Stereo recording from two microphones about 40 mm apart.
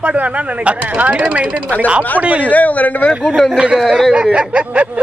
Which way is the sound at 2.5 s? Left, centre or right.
Left.